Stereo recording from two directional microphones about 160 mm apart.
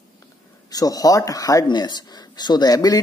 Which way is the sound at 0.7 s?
25° left (ahead or behind).